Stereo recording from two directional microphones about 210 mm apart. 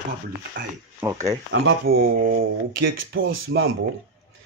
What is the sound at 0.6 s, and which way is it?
Speech, 60° right (ahead or behind).